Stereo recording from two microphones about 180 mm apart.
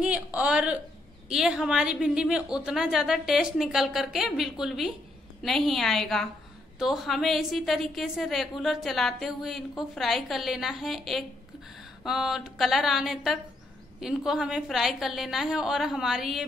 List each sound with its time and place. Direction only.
0.0 s a woman's voice: 10° right (ahead or behind)